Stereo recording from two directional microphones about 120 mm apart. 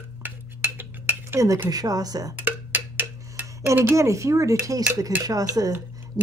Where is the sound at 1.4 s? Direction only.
30° right (ahead or behind).